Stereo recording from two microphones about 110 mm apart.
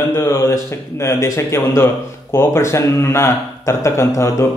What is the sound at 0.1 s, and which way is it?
Speech, 20° left (ahead or behind).